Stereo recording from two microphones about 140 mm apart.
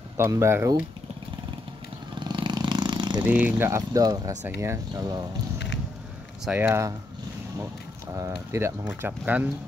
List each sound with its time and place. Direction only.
0.2 s speech: 20° right (ahead or behind)
2.1 s vehicle: 35° right (ahead or behind)
3.3 s speech: 10° right (ahead or behind)
6.4 s speech: 15° right (ahead or behind)
8.2 s speech: 20° right (ahead or behind)